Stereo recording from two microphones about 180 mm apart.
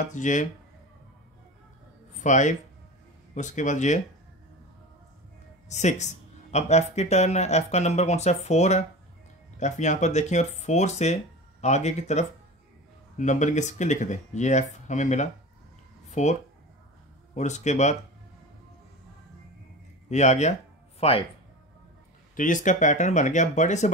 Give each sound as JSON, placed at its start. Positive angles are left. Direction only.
{"t": 0.1, "sound": "speech", "side_deg": 45}
{"t": 2.2, "sound": "speech", "side_deg": 40}
{"t": 5.7, "sound": "speech", "side_deg": 40}
{"t": 20.1, "sound": "speech", "side_deg": 40}
{"t": 22.3, "sound": "speech", "side_deg": 45}